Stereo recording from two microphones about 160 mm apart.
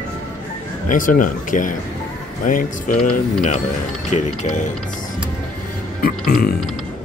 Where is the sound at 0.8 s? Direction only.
55° left (ahead or behind).